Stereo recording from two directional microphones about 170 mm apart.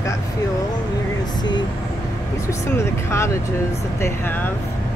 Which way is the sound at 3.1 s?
15° left (ahead or behind).